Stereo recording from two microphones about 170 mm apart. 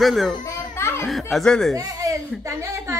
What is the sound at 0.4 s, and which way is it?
Children playing, 15° left (ahead or behind).